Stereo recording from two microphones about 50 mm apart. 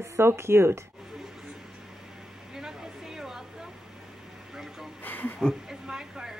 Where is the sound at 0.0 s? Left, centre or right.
Right.